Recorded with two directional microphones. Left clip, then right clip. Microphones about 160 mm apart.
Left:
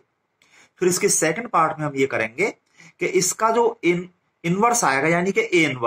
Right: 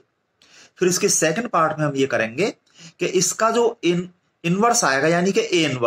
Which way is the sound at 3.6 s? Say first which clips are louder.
Even; 40° right (ahead or behind).